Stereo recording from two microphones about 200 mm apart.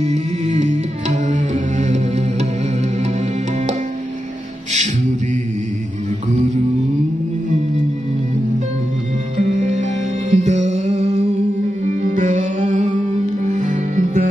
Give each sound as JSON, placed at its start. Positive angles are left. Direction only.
{"t": 0.0, "sound": "music", "side_deg": -35}
{"t": 9.5, "sound": "music", "side_deg": -40}